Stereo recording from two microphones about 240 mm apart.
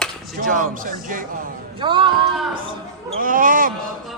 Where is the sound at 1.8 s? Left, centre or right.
Right.